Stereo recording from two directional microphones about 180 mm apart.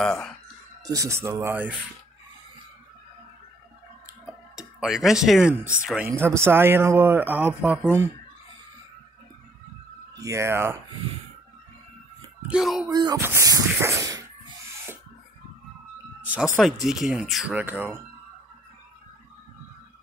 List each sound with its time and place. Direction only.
0.0 s speech: 5° left (ahead or behind)
0.8 s speech: 20° right (ahead or behind)
4.6 s speech: 5° right (ahead or behind)
10.1 s speech: 15° right (ahead or behind)
12.4 s speech: 5° right (ahead or behind)
12.9 s speech: 25° right (ahead or behind)
16.5 s speech: centre (ahead or behind)